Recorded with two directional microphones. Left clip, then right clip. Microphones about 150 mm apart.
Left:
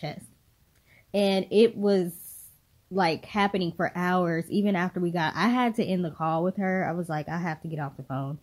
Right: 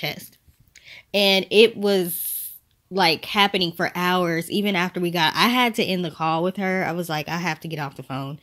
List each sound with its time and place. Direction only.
1.1 s speech: 15° right (ahead or behind)
6.5 s speech: 25° right (ahead or behind)
6.9 s speech: 10° right (ahead or behind)